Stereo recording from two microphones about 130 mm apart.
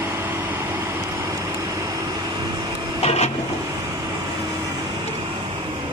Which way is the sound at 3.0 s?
60° left (ahead or behind).